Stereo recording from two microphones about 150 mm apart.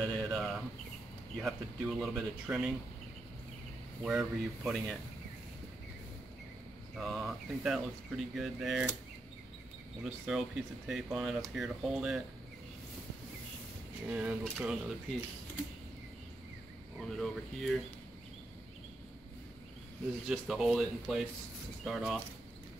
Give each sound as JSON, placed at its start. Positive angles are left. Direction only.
{"t": 0.0, "sound": "a sound", "side_deg": 0}
{"t": 1.4, "sound": "speech", "side_deg": 0}
{"t": 2.5, "sound": "speech", "side_deg": -15}
{"t": 4.0, "sound": "speech", "side_deg": -5}
{"t": 7.0, "sound": "speech", "side_deg": 0}
{"t": 10.0, "sound": "speech", "side_deg": -5}
{"t": 14.0, "sound": "speech", "side_deg": -5}
{"t": 17.0, "sound": "speech", "side_deg": 0}
{"t": 20.2, "sound": "speech", "side_deg": -5}